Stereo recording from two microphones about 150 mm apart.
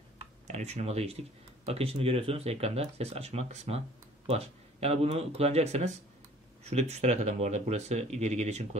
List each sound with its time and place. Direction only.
0.2 s tick-tock: 45° right (ahead or behind)
1.7 s a man's voice: 40° right (ahead or behind)